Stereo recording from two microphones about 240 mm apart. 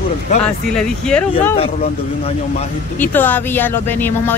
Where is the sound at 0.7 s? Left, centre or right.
Centre.